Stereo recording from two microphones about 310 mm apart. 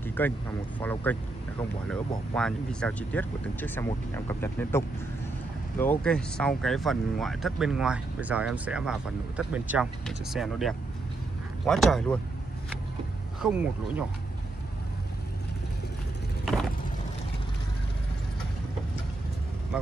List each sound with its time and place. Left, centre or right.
0.0 s vehicle: centre
0.7 s speech: centre
13.4 s speech: centre
19.7 s speech: centre